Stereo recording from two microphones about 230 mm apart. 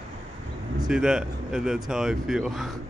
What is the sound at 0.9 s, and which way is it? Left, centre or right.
Speech, centre.